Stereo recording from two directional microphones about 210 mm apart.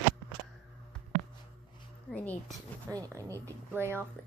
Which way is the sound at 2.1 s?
5° left (ahead or behind).